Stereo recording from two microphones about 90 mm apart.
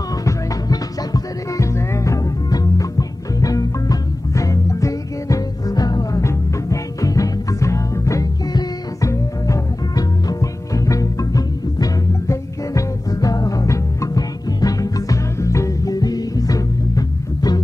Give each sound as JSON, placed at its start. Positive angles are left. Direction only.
{"t": 0.2, "sound": "music", "side_deg": 40}